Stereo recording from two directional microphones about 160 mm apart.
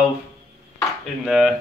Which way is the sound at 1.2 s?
Centre (ahead or behind).